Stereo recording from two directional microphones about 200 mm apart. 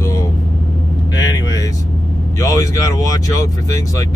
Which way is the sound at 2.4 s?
15° left (ahead or behind).